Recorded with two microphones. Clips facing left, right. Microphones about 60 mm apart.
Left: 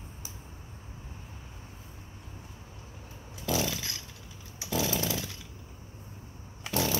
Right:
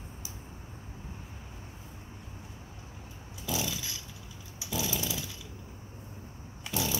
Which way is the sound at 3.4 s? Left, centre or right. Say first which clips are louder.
Left 4 dB; left.